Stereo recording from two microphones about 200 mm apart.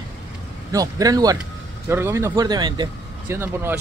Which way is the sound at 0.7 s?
15° right (ahead or behind).